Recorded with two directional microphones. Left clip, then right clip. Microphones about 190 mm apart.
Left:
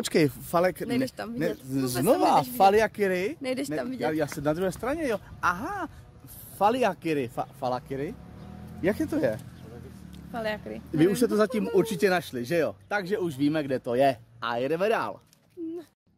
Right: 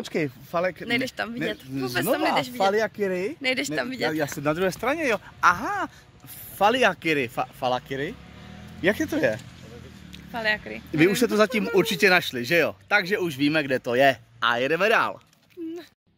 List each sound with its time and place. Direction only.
0.0 s speech: 40° left (ahead or behind)
0.5 s speech: 70° left (ahead or behind)
0.8 s speech: centre (ahead or behind)
1.7 s speech: 80° left
2.0 s speech: 65° left (ahead or behind)
2.5 s speech: 25° left (ahead or behind)
3.3 s speech: 5° left (ahead or behind)
4.4 s speech: 30° right (ahead or behind)
4.6 s speech: 15° right (ahead or behind)
10.1 s speech: 15° left (ahead or behind)
10.9 s speech: 15° right (ahead or behind)